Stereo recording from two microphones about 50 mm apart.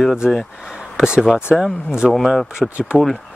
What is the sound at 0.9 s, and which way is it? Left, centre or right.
Speech, centre.